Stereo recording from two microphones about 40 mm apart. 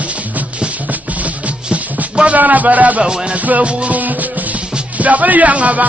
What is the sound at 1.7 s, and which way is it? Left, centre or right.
Music, right.